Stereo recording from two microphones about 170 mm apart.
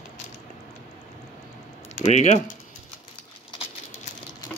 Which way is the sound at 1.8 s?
40° left (ahead or behind).